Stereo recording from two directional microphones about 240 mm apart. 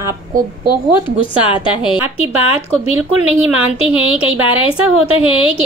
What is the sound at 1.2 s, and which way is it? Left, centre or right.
Speech, left.